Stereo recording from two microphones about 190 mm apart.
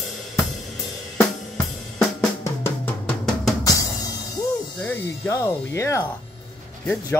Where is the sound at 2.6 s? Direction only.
5° left (ahead or behind).